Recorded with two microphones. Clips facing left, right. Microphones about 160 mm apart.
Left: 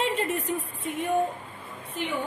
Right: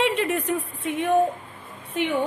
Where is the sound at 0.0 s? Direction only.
85° right.